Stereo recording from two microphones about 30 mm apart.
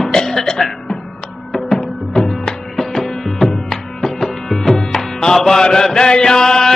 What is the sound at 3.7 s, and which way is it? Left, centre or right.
Music, centre.